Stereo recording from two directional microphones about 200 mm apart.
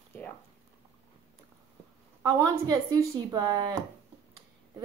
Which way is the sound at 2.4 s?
20° right (ahead or behind).